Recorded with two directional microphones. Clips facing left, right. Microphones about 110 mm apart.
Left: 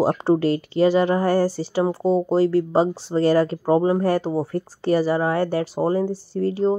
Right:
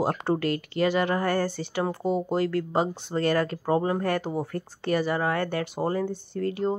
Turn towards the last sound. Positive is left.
turn(degrees=30)  # may be behind; listen again after turning